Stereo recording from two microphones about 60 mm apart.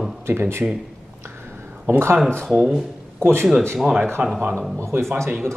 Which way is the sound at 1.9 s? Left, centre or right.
Right.